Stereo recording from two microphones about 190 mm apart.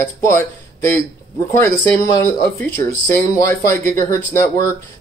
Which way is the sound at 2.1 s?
15° left (ahead or behind).